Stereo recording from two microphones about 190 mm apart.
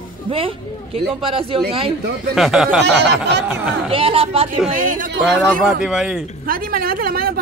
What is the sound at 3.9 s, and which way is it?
Speech, 30° right (ahead or behind).